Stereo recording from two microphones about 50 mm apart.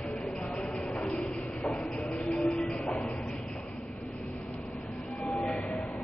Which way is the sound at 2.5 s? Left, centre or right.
Centre.